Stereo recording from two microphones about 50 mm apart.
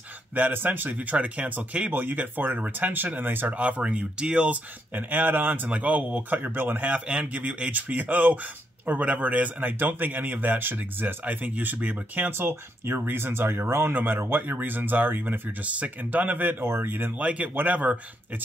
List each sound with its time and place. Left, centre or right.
0.3 s a man's voice: right
1.9 s a man's voice: right; by 4.6 s centre
4.9 s a man's voice: right
5.7 s speech: right
6.3 s speech: right
6.9 s speech: right
7.9 s a man's voice: right
12.3 s a man's voice: right
16.6 s speech: right
17.2 s a man's voice: right